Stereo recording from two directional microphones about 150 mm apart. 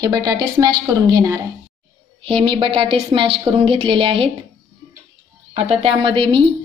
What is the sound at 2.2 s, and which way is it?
A woman's voice, 35° right (ahead or behind).